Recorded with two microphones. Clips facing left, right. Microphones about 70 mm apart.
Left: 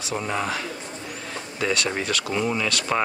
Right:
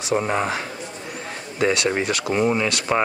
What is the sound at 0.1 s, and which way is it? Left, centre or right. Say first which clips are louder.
Speech: right 5 dB; right.